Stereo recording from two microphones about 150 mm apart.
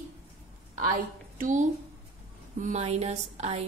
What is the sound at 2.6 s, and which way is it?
A woman's voice, 50° right (ahead or behind).